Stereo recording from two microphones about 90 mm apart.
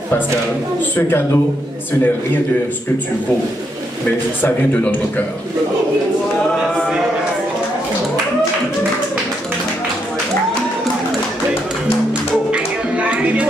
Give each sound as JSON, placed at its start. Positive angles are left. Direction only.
{"t": 0.9, "sound": "speech", "side_deg": 30}
{"t": 4.4, "sound": "speech", "side_deg": 20}
{"t": 12.4, "sound": "music", "side_deg": -15}